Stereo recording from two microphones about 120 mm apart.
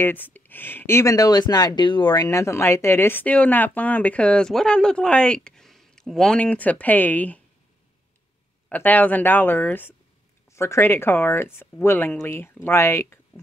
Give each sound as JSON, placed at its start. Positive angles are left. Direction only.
{"t": 0.0, "sound": "speech", "side_deg": 15}
{"t": 2.2, "sound": "speech", "side_deg": 25}
{"t": 8.6, "sound": "speech", "side_deg": 15}